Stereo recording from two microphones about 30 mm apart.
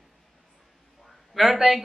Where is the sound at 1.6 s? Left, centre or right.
Centre.